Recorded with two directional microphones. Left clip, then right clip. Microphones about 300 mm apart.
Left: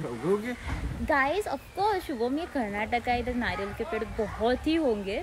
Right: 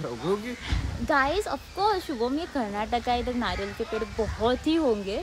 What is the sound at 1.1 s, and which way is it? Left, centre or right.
Speech, centre.